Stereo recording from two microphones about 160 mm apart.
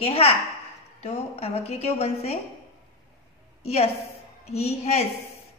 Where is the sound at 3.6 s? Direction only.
40° left (ahead or behind).